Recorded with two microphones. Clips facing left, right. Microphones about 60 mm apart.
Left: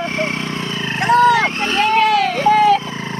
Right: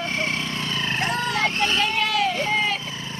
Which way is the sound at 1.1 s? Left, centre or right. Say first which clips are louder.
Left 16 dB; left.